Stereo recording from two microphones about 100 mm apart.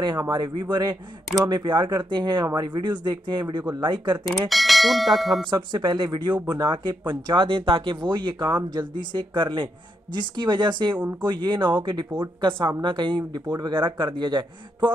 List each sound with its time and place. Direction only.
0.3 s speech: 50° right (ahead or behind)
4.3 s speech: centre (ahead or behind)
5.5 s speech: 50° right (ahead or behind)